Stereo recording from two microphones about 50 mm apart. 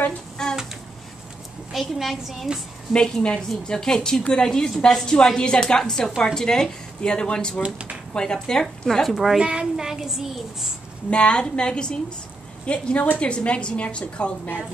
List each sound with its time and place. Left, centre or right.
0.4 s a sound: centre
1.7 s a woman's voice: centre
2.9 s a woman's voice: centre
7.6 s speech: right
8.1 s a woman's voice: centre
9.0 s a woman's voice: centre
9.4 s speech: centre
11.1 s a woman's voice: left